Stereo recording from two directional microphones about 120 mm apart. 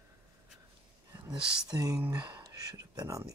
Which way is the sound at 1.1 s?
30° right (ahead or behind).